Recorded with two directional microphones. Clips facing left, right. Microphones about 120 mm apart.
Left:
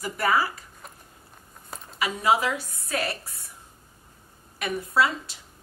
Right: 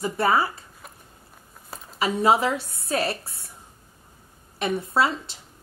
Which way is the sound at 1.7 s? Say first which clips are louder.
Even; 5° right (ahead or behind).